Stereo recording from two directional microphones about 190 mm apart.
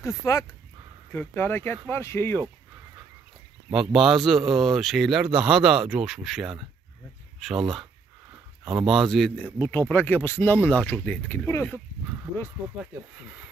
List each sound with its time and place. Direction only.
0.0 s speech: 15° left (ahead or behind)
3.9 s speech: centre (ahead or behind)
9.6 s speech: 10° left (ahead or behind)